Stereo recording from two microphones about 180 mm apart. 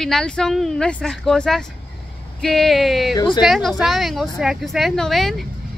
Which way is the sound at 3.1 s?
25° left (ahead or behind).